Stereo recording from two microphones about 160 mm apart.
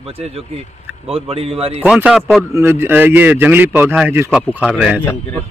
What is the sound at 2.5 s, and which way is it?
Speech, 15° right (ahead or behind).